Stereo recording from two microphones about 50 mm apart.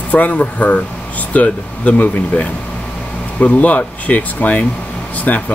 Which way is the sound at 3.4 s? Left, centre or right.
Left.